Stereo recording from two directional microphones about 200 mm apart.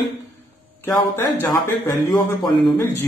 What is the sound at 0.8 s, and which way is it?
Speech, 15° left (ahead or behind).